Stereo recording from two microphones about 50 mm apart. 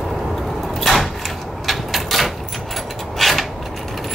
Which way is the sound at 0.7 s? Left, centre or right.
Centre.